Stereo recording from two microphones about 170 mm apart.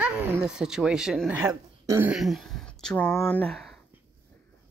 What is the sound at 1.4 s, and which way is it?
Speech, 15° right (ahead or behind).